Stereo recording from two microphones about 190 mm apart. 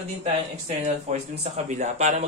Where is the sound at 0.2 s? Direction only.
35° right (ahead or behind).